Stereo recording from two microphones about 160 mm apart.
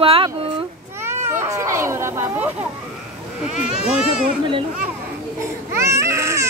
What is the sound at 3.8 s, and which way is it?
Speech, 5° right (ahead or behind).